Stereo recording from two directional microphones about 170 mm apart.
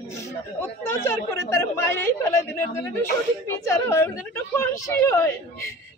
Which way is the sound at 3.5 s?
15° left (ahead or behind).